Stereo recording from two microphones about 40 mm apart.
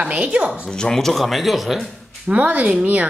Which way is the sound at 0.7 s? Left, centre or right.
Centre.